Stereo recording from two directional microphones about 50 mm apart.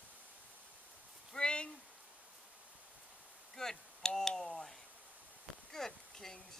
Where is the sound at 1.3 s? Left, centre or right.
Centre.